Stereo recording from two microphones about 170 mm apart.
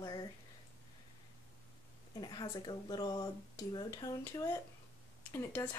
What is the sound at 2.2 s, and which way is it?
Speech, 25° left (ahead or behind).